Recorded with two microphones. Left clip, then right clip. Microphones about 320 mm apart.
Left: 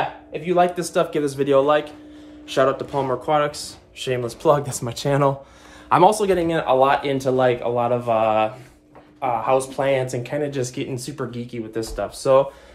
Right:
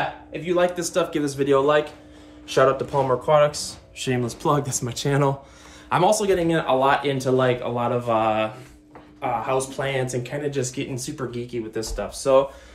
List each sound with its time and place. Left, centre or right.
0.3 s speech: centre